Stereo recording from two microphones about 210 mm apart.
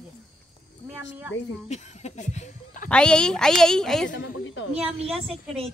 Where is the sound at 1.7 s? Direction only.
35° left (ahead or behind).